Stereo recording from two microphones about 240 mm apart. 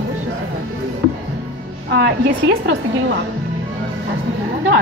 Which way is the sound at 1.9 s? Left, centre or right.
Right.